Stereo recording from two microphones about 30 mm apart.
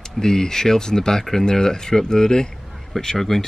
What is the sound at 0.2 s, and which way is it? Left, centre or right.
Speech, centre.